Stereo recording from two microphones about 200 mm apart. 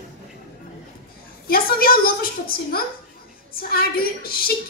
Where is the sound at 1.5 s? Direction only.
50° left (ahead or behind).